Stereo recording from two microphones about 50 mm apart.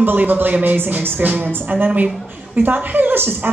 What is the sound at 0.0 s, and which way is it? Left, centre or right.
A woman's voice, right.